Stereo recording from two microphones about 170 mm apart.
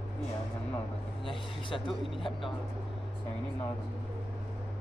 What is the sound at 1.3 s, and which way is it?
Speech, 30° left (ahead or behind).